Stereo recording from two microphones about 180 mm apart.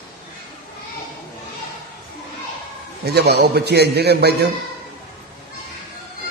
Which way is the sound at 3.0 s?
65° right (ahead or behind).